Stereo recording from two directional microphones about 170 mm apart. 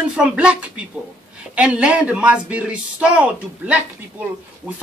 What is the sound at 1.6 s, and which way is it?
Speech, 5° right (ahead or behind).